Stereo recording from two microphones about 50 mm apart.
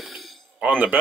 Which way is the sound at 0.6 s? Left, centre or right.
Right.